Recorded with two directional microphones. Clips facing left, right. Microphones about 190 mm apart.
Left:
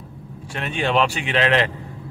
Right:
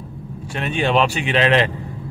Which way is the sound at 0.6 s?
20° right (ahead or behind).